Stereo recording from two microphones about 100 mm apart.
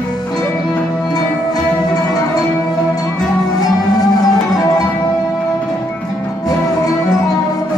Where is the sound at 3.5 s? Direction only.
40° left (ahead or behind).